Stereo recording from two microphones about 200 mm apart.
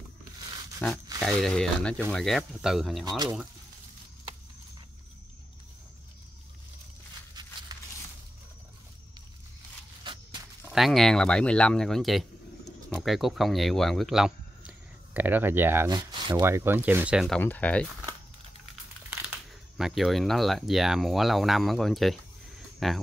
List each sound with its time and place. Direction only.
0.8 s speech: 5° left (ahead or behind)
3.1 s speech: 20° right (ahead or behind)
7.7 s a sound: 20° right (ahead or behind)
10.1 s walk: 25° right (ahead or behind)
10.7 s speech: centre (ahead or behind)
16.0 s speech: 20° right (ahead or behind); by 17.4 s 5° right (ahead or behind)
17.4 s speech: 10° left (ahead or behind)
19.3 s speech: centre (ahead or behind)